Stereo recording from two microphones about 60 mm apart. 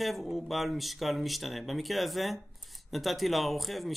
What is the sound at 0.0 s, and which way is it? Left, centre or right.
Speech, centre.